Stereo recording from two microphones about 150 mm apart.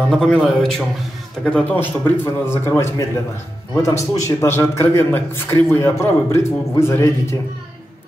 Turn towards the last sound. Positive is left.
turn(degrees=15)  # may be behind; listen again after turning